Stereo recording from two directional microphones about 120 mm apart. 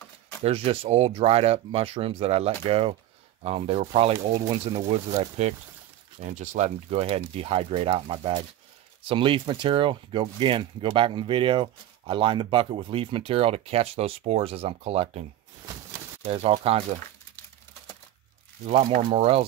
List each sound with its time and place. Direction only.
0.4 s speech: 55° right (ahead or behind)
4.3 s speech: 45° right (ahead or behind); by 5.5 s 70° right (ahead or behind)
6.2 s speech: 80° right; by 15.2 s 60° right (ahead or behind)
16.3 s speech: 55° right (ahead or behind)
18.7 s speech: 75° right (ahead or behind)
19.0 s speech: 55° right (ahead or behind)